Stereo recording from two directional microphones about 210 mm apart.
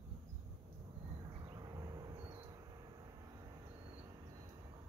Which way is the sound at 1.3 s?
20° right (ahead or behind).